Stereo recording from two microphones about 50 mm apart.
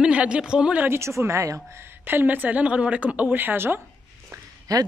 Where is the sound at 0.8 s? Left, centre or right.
Right.